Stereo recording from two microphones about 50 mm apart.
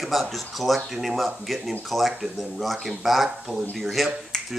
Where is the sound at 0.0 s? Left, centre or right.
Centre.